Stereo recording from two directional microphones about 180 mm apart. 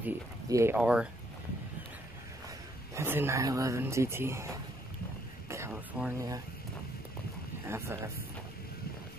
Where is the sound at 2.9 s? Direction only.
15° right (ahead or behind).